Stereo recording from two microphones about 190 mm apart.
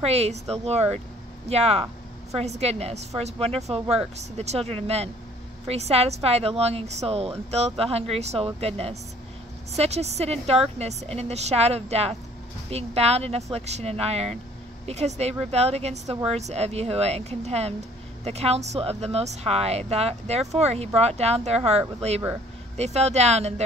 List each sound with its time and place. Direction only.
0.0 s a woman's voice: 35° right (ahead or behind)